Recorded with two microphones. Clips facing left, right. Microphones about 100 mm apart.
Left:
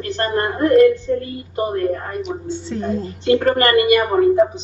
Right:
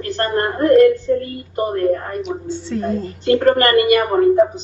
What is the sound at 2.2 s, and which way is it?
Speech, centre (ahead or behind).